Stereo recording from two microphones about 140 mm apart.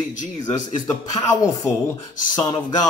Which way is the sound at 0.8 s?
25° left (ahead or behind).